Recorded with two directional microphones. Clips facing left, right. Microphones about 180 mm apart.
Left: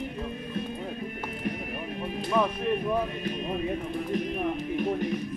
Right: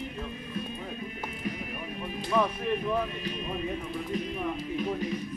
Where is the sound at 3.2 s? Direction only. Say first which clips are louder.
Left 3 dB; 50° left (ahead or behind).